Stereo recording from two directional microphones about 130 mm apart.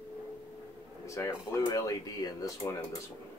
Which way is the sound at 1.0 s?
25° left (ahead or behind).